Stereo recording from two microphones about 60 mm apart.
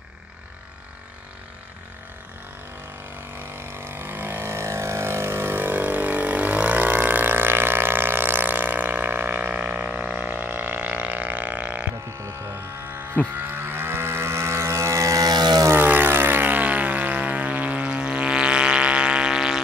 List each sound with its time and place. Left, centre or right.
3.3 s vehicle: right
12.2 s a sound: right
13.3 s vehicle: right
15.7 s vehicle: right; by 19.6 s centre